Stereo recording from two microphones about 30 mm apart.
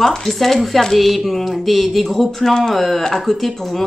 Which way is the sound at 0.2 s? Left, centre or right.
Centre.